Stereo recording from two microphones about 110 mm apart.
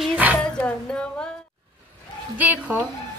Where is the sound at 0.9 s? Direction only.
10° left (ahead or behind).